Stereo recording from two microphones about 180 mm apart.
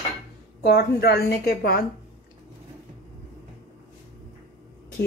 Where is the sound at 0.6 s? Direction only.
60° left (ahead or behind).